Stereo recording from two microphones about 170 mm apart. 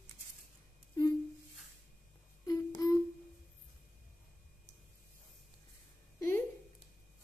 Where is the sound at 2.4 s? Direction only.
20° left (ahead or behind).